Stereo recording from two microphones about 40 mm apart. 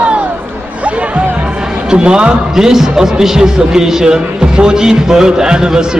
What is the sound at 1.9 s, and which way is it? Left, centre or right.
Speech, right.